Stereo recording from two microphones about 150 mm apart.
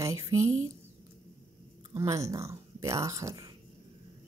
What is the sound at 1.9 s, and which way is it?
Speech, 20° right (ahead or behind).